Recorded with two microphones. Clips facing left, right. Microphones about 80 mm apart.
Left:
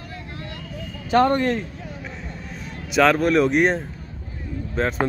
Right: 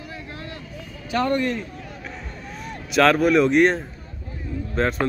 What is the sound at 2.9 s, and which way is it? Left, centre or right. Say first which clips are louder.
Speech: right 1 dB; centre.